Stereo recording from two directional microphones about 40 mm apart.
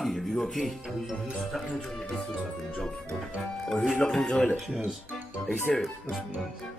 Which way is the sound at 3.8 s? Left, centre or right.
Left.